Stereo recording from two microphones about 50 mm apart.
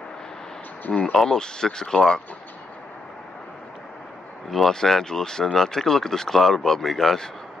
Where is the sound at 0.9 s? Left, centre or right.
Centre.